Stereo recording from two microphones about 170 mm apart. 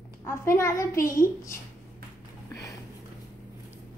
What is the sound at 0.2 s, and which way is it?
A woman's voice, 15° left (ahead or behind).